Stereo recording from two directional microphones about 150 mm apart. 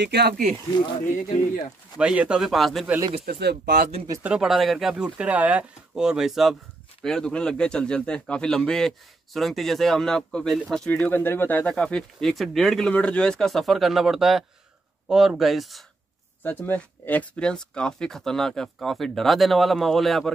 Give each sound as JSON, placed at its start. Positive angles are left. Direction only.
{"t": 0.1, "sound": "speech", "side_deg": -90}
{"t": 1.0, "sound": "speech", "side_deg": 60}
{"t": 2.0, "sound": "speech", "side_deg": -5}
{"t": 3.3, "sound": "speech", "side_deg": -90}
{"t": 4.2, "sound": "speech", "side_deg": -5}
{"t": 16.4, "sound": "speech", "side_deg": 10}